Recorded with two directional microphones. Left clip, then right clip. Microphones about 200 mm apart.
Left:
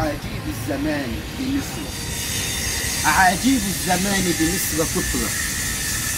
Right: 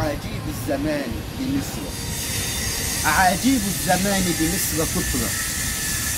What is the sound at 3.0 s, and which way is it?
Speech, 30° right (ahead or behind).